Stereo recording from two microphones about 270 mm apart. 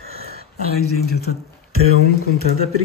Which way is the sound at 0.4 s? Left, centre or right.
Left.